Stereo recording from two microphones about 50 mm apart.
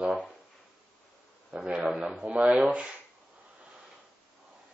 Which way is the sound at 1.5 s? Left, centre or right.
Centre.